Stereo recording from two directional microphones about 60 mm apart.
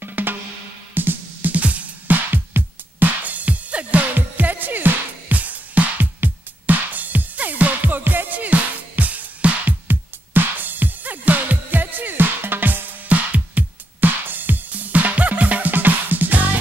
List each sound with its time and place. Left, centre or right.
0.0 s music: right